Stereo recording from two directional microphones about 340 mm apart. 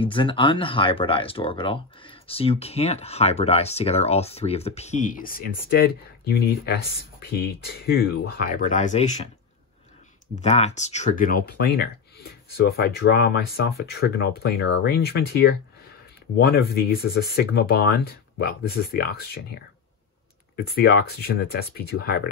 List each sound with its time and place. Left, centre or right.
0.0 s speech: centre
10.3 s speech: centre